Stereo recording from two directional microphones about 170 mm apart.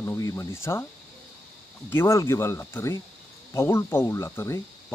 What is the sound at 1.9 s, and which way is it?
Speech, 15° left (ahead or behind).